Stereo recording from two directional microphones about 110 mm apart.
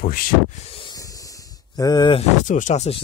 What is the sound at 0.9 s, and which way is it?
Hiss, 30° left (ahead or behind).